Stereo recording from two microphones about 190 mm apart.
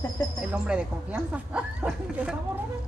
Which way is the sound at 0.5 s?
5° right (ahead or behind).